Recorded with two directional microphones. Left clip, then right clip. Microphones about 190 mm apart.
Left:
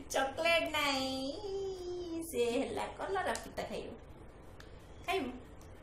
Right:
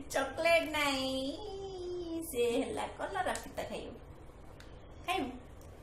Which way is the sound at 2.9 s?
15° left (ahead or behind).